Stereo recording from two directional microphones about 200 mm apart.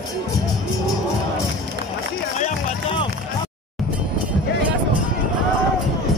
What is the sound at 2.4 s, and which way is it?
Music, 25° left (ahead or behind).